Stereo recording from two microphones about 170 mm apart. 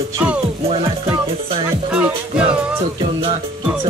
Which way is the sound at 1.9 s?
5° right (ahead or behind).